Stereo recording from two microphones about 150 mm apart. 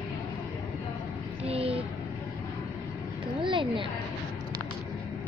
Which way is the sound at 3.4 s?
35° right (ahead or behind).